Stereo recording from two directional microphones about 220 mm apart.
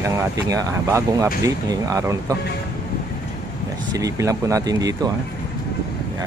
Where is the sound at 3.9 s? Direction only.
15° right (ahead or behind).